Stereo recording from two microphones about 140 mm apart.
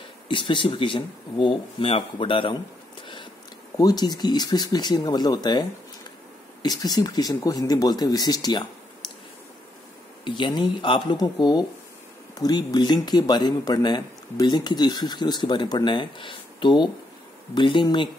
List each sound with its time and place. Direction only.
0.3 s speech: 35° left (ahead or behind)
3.7 s speech: 25° left (ahead or behind)
10.2 s speech: 35° left (ahead or behind)